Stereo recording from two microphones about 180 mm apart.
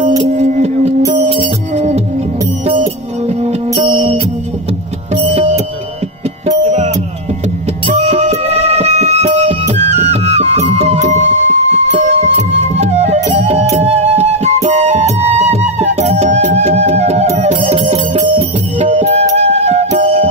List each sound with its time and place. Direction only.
0.3 s music: 40° right (ahead or behind)
3.8 s music: 35° right (ahead or behind)
7.9 s music: 35° right (ahead or behind)